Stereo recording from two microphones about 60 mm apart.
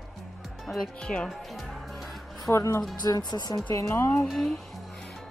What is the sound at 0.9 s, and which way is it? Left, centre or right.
Speech, centre.